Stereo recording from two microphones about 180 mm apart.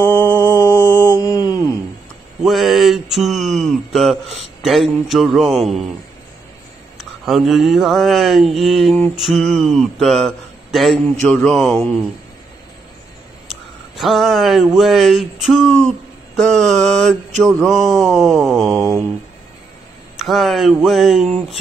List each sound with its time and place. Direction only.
0.0 s mantra: 10° left (ahead or behind)
1.2 s a sound: 20° left (ahead or behind)
2.4 s a sound: centre (ahead or behind)
4.6 s mantra: centre (ahead or behind)
7.0 s mantra: centre (ahead or behind)
13.5 s speech: centre (ahead or behind)
16.3 s mantra: centre (ahead or behind)
20.2 s speech: centre (ahead or behind)
20.8 s mantra: centre (ahead or behind)